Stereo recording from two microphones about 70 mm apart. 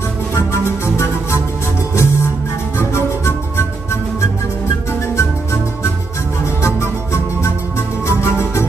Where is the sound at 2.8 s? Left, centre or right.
Left.